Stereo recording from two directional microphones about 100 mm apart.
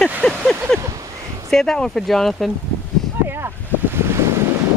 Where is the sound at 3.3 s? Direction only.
25° right (ahead or behind).